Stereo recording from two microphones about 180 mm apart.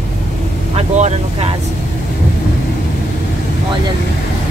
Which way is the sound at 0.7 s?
35° right (ahead or behind).